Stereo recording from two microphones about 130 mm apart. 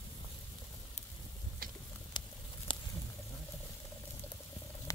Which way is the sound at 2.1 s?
35° left (ahead or behind).